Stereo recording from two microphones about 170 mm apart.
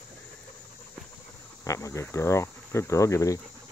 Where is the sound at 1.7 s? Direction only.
20° left (ahead or behind).